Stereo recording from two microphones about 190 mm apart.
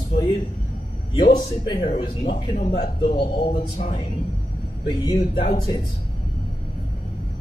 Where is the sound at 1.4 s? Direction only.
25° left (ahead or behind).